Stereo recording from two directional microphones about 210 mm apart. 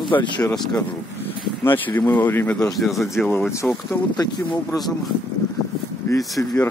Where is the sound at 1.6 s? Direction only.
10° left (ahead or behind).